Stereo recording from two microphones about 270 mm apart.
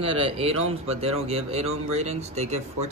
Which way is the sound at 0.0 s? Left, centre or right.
Right.